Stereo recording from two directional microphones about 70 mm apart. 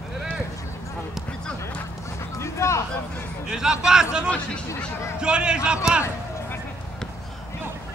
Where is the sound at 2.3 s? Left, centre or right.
Left.